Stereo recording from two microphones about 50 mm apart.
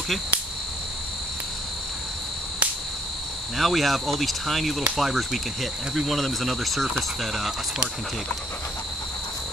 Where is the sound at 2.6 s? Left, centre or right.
Right.